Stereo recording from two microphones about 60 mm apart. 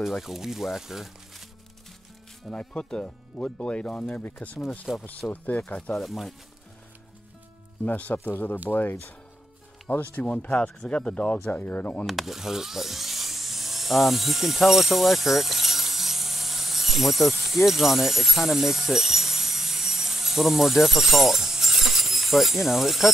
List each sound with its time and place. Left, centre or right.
0.0 s speech: centre
2.5 s speech: centre
4.9 s speech: centre
5.3 s speech: left
5.9 s speech: centre
7.8 s speech: left
10.1 s speech: left
11.5 s speech: left
12.1 s speech: centre